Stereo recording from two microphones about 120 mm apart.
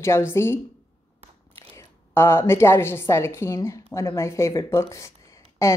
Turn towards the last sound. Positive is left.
turn(degrees=25)  # may be behind; listen again after turning